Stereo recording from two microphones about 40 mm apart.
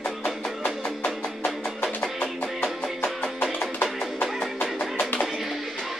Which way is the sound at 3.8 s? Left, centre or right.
Left.